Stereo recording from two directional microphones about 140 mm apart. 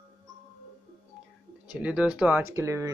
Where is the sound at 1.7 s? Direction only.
5° right (ahead or behind).